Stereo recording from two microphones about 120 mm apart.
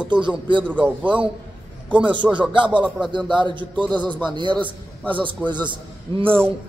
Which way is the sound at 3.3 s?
40° right (ahead or behind).